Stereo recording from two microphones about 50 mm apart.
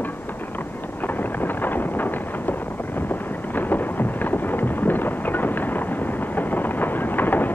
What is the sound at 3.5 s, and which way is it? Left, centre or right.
Thunder, left.